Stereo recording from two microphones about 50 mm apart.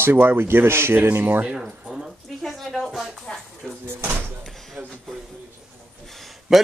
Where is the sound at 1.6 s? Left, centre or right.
Centre.